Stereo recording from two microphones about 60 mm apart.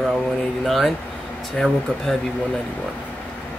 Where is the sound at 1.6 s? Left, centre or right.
Centre.